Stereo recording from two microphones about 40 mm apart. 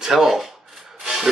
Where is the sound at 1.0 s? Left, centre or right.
Centre.